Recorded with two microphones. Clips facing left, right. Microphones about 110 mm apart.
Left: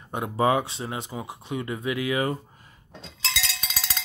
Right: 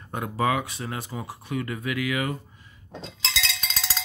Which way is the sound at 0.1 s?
25° left (ahead or behind).